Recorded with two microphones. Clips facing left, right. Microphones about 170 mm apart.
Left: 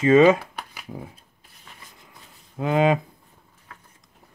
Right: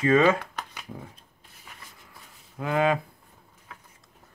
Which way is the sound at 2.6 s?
20° left (ahead or behind).